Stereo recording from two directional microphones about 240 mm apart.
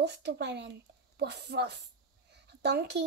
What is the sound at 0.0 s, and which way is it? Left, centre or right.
Speech, right.